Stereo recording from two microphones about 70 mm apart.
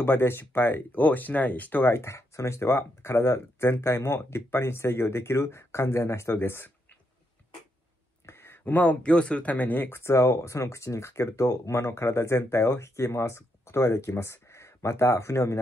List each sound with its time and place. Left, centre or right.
0.0 s speech: left
8.3 s speech: left